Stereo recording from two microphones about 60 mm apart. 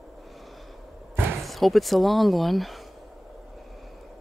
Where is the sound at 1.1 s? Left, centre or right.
Right.